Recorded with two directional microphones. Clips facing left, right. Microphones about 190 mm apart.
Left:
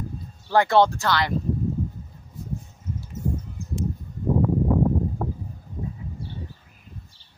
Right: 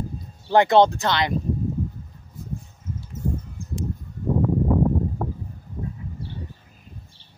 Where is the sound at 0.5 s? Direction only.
20° right (ahead or behind).